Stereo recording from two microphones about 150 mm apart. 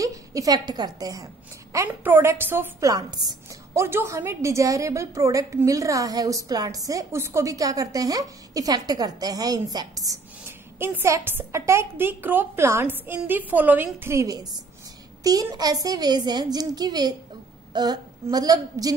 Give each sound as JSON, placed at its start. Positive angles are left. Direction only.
{"t": 0.0, "sound": "a woman's voice", "side_deg": -20}